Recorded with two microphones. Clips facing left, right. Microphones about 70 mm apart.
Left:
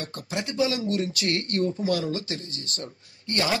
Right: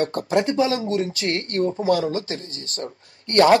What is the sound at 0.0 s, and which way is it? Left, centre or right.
Speech, right.